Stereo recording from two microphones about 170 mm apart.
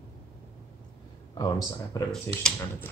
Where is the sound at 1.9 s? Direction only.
20° left (ahead or behind).